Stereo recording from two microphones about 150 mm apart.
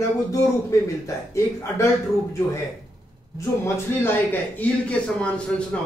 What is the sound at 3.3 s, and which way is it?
Speech, 20° left (ahead or behind).